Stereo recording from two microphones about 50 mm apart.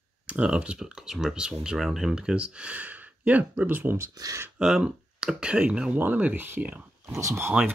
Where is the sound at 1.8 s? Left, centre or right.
Centre; by 3.9 s right.